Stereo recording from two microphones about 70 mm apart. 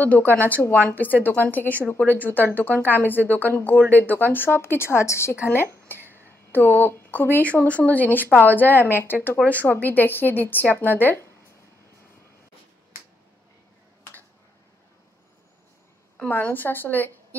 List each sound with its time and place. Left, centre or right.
0.0 s speech: left
5.9 s a sound: right
6.5 s speech: left
16.3 s speech: left